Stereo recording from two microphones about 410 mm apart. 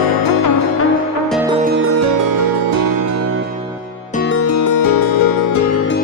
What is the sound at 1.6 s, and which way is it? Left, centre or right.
Music, right.